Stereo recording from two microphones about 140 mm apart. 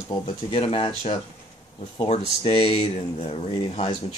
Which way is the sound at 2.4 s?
45° left (ahead or behind).